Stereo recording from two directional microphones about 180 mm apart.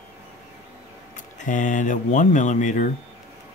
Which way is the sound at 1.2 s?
45° left (ahead or behind).